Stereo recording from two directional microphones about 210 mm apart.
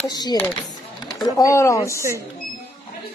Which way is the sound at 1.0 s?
20° left (ahead or behind).